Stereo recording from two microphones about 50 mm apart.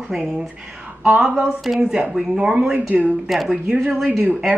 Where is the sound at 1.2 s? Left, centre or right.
Centre.